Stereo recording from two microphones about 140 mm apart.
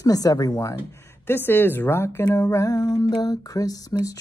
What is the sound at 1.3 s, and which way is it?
Speech, 15° left (ahead or behind).